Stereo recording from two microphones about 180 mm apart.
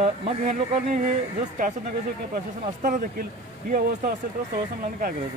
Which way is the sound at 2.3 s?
50° right (ahead or behind).